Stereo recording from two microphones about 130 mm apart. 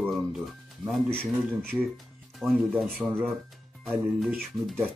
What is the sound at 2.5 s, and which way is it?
Speech, centre (ahead or behind).